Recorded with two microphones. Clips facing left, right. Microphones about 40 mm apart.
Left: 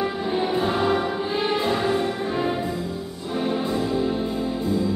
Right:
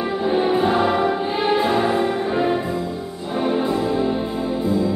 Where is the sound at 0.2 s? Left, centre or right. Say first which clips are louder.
Right 8 dB; centre.